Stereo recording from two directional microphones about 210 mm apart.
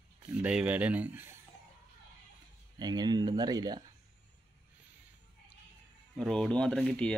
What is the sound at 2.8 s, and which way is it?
Speech, 20° right (ahead or behind).